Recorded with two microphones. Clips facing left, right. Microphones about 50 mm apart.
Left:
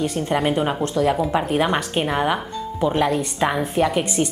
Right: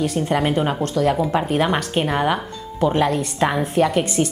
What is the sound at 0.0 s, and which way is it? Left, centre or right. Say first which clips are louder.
A woman's voice: right 1 dB; centre.